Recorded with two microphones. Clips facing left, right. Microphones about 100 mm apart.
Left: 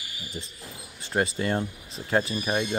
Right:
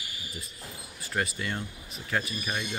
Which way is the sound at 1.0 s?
25° left (ahead or behind).